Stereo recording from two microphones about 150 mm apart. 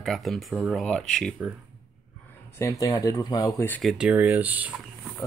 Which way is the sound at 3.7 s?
5° right (ahead or behind).